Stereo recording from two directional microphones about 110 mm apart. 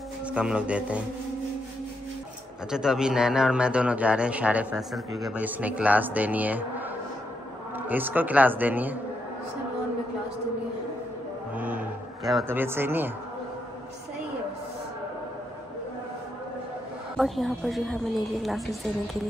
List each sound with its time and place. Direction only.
0.3 s a man's voice: 10° right (ahead or behind)
2.7 s a man's voice: 5° right (ahead or behind)
4.9 s a woman's voice: centre (ahead or behind)
5.3 s a man's voice: 15° right (ahead or behind)
7.8 s a man's voice: 15° right (ahead or behind)
11.5 s a man's voice: 15° right (ahead or behind)
17.2 s a woman's voice: centre (ahead or behind)